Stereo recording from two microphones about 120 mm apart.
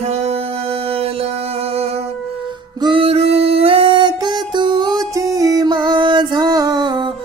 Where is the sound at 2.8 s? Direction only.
50° right (ahead or behind).